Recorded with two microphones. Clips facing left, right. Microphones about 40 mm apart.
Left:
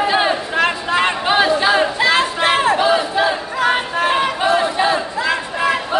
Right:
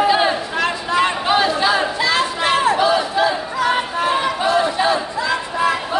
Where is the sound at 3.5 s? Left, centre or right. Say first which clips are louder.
Left 1 dB; left.